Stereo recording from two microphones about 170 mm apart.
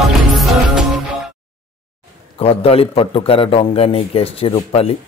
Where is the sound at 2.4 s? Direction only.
35° left (ahead or behind).